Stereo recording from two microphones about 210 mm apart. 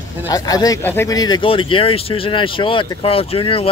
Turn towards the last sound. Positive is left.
turn(degrees=25)  # may be behind; listen again after turning